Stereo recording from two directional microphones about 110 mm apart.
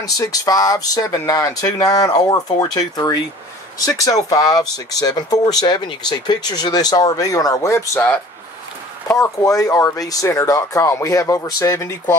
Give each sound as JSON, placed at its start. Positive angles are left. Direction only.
{"t": 0.0, "sound": "speech", "side_deg": 35}